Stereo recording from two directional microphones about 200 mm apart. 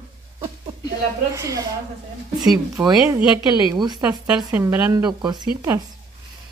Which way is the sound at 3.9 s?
5° right (ahead or behind).